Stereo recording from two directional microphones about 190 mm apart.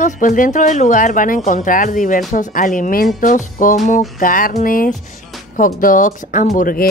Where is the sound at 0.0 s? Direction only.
45° left (ahead or behind).